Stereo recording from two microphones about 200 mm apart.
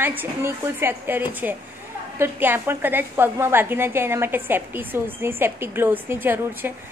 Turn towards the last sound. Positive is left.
turn(degrees=-10)  # may be behind; listen again after turning